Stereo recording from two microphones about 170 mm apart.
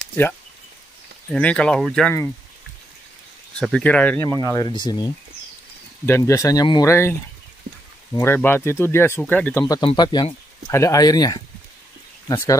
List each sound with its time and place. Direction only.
1.3 s speech: 5° left (ahead or behind)
3.5 s speech: 5° left (ahead or behind)
4.3 s speech: 20° left (ahead or behind)
6.0 s speech: 15° left (ahead or behind)
9.8 s speech: 25° left (ahead or behind)